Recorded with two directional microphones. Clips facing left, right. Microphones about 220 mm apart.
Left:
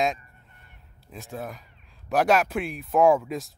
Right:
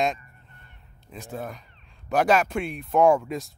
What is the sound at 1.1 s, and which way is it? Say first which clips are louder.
Speech: right 1 dB; centre (ahead or behind).